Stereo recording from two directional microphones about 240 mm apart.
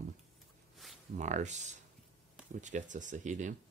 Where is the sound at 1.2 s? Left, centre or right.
Right.